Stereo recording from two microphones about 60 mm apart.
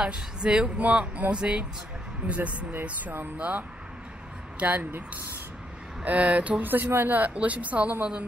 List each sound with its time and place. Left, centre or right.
0.0 s a woman's voice: centre